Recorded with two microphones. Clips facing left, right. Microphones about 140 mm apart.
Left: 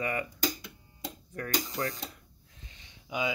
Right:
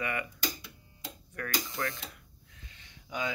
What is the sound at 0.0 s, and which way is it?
Speech, 35° left (ahead or behind).